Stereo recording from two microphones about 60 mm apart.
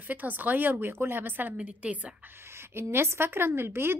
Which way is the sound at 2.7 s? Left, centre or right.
Right.